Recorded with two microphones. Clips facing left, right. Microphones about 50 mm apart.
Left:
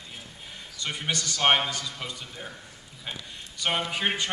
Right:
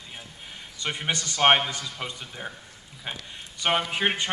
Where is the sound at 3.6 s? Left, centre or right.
Centre.